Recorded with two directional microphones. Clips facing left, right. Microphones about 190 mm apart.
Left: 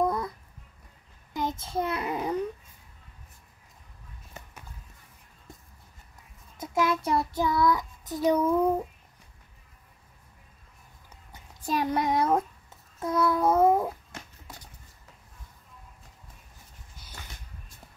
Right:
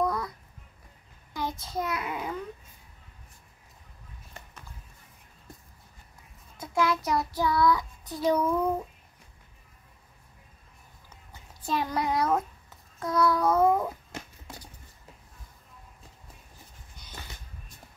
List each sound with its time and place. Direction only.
0.0 s babbling: 25° left (ahead or behind)
1.3 s a sound: 20° left (ahead or behind)
6.6 s child singing: 20° left (ahead or behind)
11.6 s child singing: 15° left (ahead or behind)
11.9 s babbling: 25° left (ahead or behind)